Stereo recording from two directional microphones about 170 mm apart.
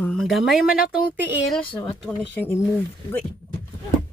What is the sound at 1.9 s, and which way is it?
Speech, 10° left (ahead or behind).